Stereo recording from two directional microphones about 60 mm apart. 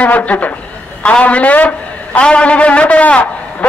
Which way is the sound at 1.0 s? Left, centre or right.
Left.